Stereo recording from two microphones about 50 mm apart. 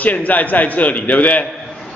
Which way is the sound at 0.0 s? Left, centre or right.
Left.